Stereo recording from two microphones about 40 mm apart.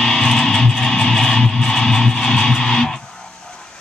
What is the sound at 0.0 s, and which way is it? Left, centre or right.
Music, centre.